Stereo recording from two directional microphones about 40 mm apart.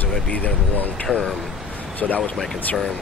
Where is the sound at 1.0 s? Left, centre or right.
Left.